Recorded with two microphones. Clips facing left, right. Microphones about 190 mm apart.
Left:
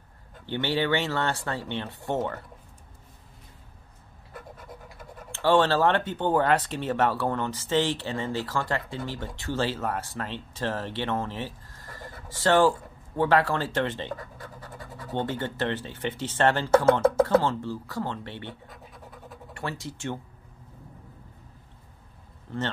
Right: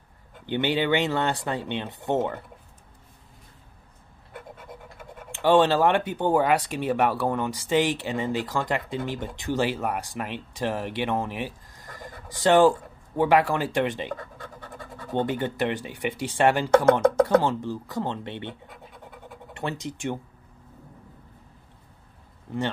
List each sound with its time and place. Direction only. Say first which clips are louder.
0.5 s speech: right 2 dB; 20° right (ahead or behind)
5.3 s speech: right 2 dB; 15° right (ahead or behind)
15.1 s speech: right 4 dB; 15° right (ahead or behind)
18.7 s scratch: right 1 dB; centre (ahead or behind)
19.5 s speech: right 3 dB; 20° right (ahead or behind)
22.5 s speech: right 3 dB; 15° right (ahead or behind)